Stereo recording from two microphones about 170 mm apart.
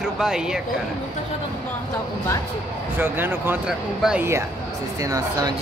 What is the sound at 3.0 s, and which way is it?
Speech, 10° right (ahead or behind).